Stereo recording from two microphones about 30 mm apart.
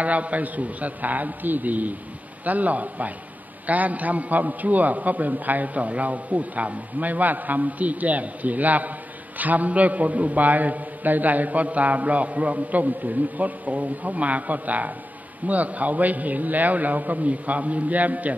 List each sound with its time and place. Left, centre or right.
0.0 s a man's voice: right
5.8 s a man's voice: right